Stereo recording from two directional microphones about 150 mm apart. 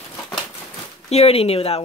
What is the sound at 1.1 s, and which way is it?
Speech, 40° left (ahead or behind).